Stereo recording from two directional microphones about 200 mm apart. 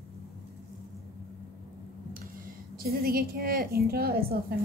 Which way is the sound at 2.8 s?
50° right (ahead or behind).